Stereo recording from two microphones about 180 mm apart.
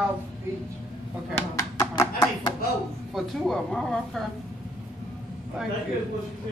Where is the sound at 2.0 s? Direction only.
20° left (ahead or behind).